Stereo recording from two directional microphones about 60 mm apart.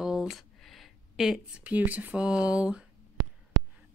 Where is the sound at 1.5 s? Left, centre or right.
Right.